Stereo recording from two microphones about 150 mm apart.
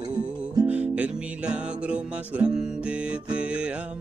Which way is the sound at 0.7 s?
10° right (ahead or behind).